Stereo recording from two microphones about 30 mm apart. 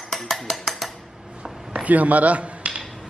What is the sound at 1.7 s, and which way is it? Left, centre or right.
A man's voice, right.